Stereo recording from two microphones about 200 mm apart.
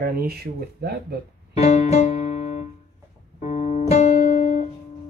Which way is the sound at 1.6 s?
30° left (ahead or behind).